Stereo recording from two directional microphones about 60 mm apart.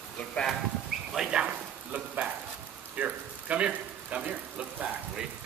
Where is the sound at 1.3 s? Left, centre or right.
Centre.